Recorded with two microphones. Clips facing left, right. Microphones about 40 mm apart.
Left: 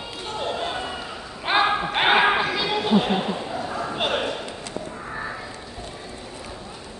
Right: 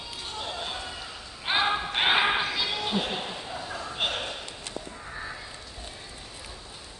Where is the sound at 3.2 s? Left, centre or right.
Left.